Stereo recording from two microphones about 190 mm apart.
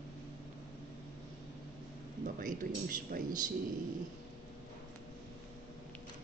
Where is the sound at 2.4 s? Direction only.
45° right (ahead or behind).